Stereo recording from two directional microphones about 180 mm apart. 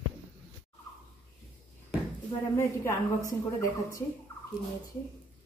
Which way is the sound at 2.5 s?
15° left (ahead or behind).